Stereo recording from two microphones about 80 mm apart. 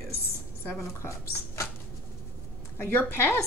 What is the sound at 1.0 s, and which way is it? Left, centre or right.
Speech, left.